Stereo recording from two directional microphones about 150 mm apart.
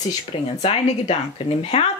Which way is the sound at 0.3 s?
40° left (ahead or behind).